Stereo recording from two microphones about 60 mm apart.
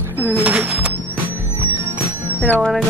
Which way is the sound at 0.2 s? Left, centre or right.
Right.